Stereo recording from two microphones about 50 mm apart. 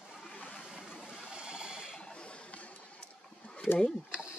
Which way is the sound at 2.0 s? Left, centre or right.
Left.